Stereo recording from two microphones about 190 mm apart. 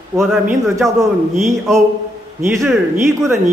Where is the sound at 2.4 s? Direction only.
15° right (ahead or behind).